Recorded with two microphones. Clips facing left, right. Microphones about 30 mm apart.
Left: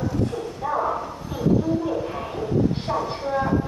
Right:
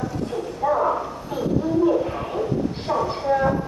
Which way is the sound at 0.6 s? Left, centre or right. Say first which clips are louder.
Right 4 dB; centre.